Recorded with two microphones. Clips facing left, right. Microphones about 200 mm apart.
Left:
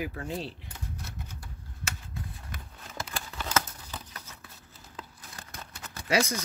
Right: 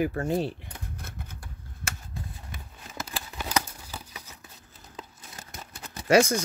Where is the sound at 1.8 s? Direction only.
50° right (ahead or behind).